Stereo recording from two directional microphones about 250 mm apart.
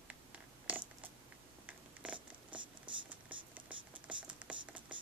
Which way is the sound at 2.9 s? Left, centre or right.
Centre.